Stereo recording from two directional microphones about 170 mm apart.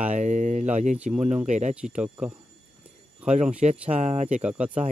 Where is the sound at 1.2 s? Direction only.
45° right (ahead or behind).